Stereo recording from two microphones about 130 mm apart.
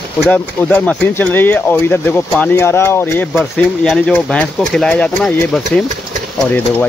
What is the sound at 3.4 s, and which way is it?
Speech, 5° left (ahead or behind).